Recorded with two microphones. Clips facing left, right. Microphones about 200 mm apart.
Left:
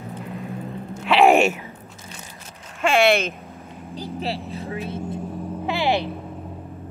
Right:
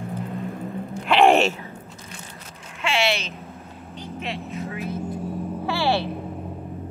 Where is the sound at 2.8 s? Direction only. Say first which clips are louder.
Left 7 dB; 50° left (ahead or behind).